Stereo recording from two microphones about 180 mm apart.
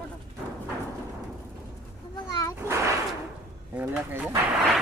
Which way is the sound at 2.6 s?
15° right (ahead or behind).